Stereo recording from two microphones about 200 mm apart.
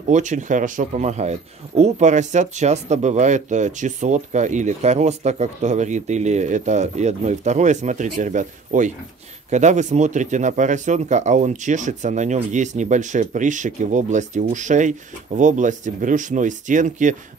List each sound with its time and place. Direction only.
0.1 s speech: 35° right (ahead or behind)